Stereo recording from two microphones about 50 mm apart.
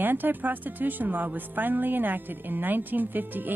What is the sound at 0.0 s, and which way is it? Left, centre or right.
Speech, right.